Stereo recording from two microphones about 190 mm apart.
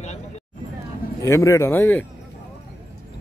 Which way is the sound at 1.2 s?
15° left (ahead or behind).